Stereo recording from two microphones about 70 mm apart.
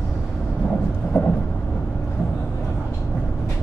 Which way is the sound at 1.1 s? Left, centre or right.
Left.